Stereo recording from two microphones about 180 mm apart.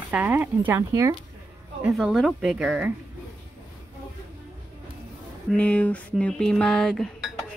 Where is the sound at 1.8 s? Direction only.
Centre (ahead or behind).